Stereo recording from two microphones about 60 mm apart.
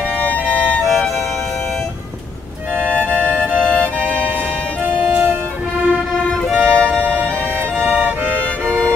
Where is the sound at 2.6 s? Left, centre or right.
Right.